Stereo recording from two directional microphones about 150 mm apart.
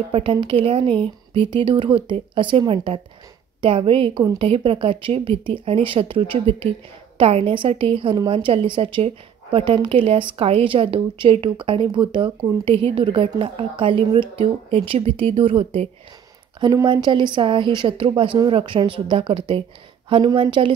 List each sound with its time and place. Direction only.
0.1 s a woman's voice: 35° right (ahead or behind)